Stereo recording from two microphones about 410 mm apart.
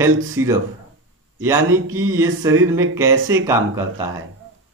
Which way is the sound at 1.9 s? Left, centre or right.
Centre.